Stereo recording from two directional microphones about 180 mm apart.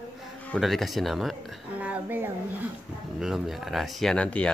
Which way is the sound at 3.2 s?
Centre (ahead or behind).